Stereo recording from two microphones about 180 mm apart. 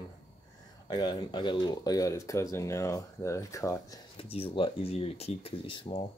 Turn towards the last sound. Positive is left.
turn(degrees=30)  # may be behind; listen again after turning